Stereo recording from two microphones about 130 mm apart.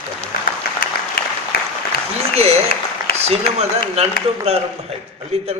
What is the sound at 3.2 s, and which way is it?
A man's voice, 55° right (ahead or behind).